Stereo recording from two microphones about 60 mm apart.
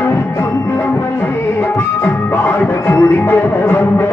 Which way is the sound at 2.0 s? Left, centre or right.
Left.